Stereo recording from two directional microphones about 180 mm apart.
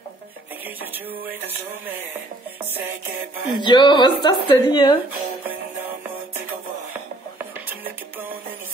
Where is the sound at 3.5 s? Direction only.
25° left (ahead or behind).